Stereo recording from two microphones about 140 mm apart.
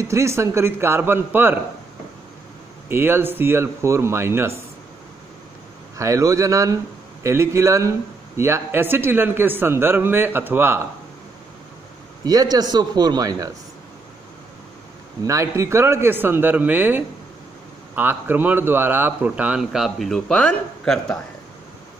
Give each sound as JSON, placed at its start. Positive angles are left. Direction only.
{"t": 0.0, "sound": "a man's voice", "side_deg": -20}
{"t": 2.9, "sound": "a man's voice", "side_deg": -15}
{"t": 5.9, "sound": "a man's voice", "side_deg": -20}
{"t": 12.3, "sound": "a man's voice", "side_deg": -25}
{"t": 15.2, "sound": "a man's voice", "side_deg": -20}